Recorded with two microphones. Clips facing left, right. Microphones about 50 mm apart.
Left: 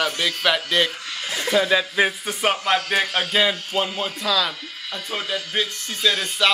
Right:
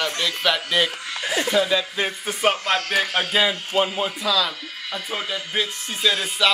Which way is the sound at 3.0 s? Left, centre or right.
Centre.